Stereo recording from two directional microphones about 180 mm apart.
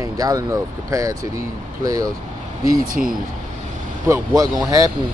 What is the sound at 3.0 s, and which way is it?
Speech, 5° right (ahead or behind).